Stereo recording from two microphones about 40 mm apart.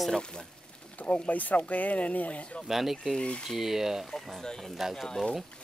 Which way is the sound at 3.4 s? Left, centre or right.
Centre.